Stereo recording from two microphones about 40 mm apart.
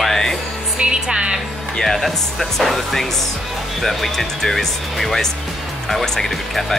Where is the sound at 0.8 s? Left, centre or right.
Right.